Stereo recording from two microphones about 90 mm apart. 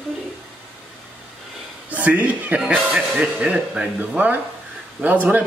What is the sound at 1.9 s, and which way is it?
A man's voice, 15° right (ahead or behind).